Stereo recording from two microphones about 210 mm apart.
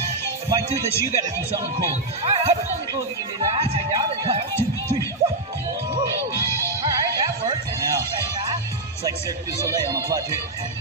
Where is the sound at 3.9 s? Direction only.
20° right (ahead or behind).